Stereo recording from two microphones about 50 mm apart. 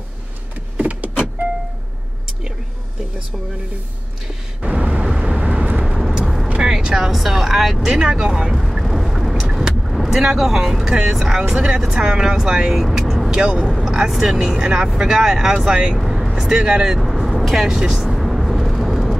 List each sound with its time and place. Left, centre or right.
0.7 s power windows: right
4.6 s a sound: right
5.0 s vehicle: centre
5.4 s vehicle: right
5.9 s vehicle: centre
6.6 s a sound: centre
7.1 s speech: centre
16.0 s speech: centre
17.0 s vehicle: centre
18.1 s vehicle: centre